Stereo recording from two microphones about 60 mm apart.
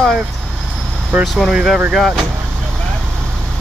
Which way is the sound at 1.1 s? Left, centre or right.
Right.